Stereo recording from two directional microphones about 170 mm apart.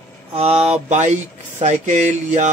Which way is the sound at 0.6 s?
40° right (ahead or behind).